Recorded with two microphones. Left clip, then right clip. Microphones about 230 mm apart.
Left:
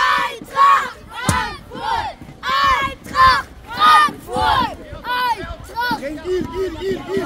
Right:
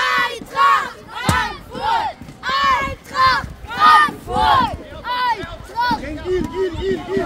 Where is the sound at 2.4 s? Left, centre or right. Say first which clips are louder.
Left 1 dB; left.